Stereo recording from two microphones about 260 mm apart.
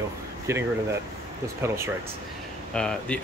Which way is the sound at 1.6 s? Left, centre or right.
Centre.